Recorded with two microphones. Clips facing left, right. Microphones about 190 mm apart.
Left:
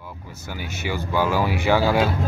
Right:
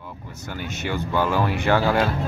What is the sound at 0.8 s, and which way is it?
Speech, 5° left (ahead or behind).